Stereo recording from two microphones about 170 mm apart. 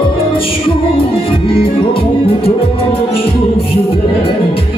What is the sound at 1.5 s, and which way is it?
Music, 30° left (ahead or behind).